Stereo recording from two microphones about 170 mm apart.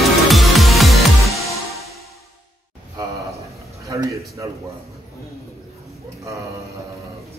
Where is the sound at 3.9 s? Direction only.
20° right (ahead or behind).